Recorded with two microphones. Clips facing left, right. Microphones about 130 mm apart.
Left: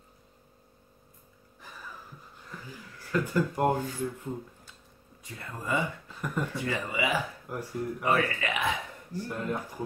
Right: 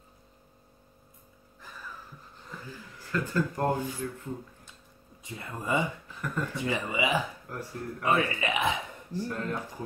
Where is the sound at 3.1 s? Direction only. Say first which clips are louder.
Left 2 dB; 15° left (ahead or behind).